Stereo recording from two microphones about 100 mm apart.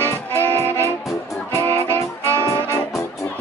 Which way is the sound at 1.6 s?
30° left (ahead or behind).